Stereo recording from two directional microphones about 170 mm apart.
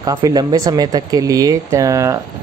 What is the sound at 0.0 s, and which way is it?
Speech, 20° right (ahead or behind).